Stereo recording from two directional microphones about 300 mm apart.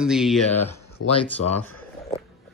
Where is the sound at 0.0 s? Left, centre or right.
Centre.